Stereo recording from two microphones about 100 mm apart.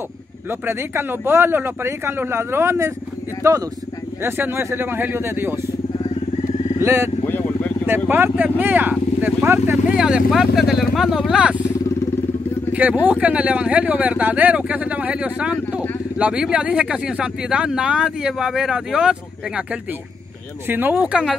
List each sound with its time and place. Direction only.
0.5 s speech: 25° right (ahead or behind)
6.8 s speech: 30° right (ahead or behind)
7.2 s vehicle: 20° left (ahead or behind)
8.1 s speech: 20° right (ahead or behind)
9.9 s speech: 10° right (ahead or behind)
12.7 s speech: 15° right (ahead or behind)